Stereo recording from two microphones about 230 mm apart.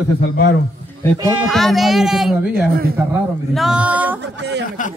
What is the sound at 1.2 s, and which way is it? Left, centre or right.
Speech, centre.